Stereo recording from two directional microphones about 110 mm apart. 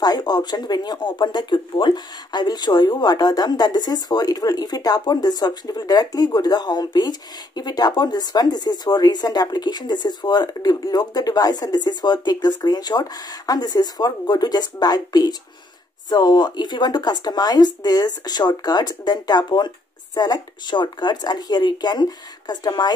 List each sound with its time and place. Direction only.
0.0 s speech: 40° left (ahead or behind)